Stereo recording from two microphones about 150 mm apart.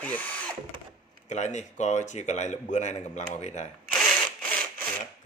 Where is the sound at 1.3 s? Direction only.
50° left (ahead or behind).